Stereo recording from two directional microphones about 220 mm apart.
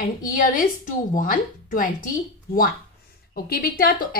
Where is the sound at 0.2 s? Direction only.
40° left (ahead or behind).